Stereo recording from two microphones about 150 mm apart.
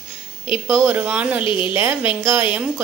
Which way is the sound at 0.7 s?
15° right (ahead or behind).